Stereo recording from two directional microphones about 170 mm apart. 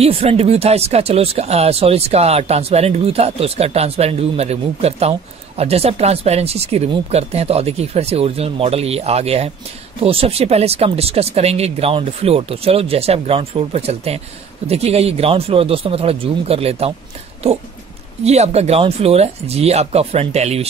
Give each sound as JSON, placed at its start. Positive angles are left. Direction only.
{"t": 0.0, "sound": "speech", "side_deg": -35}